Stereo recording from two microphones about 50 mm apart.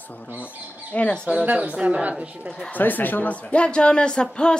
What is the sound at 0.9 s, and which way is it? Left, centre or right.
Music, left.